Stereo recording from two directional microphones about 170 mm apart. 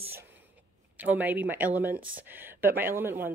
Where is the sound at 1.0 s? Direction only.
10° right (ahead or behind).